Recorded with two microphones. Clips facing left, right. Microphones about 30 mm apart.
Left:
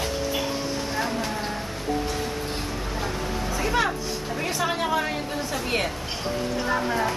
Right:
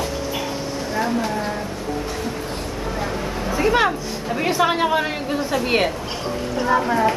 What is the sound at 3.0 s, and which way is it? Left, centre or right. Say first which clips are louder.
A woman's voice: right 3 dB; right.